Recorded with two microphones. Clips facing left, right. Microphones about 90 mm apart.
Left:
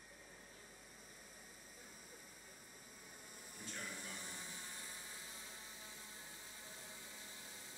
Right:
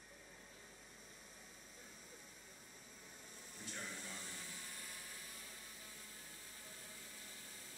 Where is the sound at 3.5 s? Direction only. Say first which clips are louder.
Even; 10° left (ahead or behind).